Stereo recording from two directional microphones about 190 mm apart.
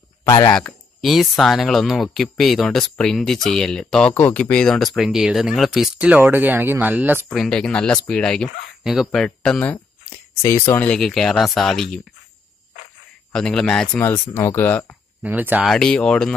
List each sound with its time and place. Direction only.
0.2 s speech: 15° left (ahead or behind)
0.6 s speech: centre (ahead or behind)
7.2 s speech: 5° left (ahead or behind)
13.3 s speech: 5° left (ahead or behind)
15.2 s speech: 10° right (ahead or behind)
15.7 s speech: 5° left (ahead or behind)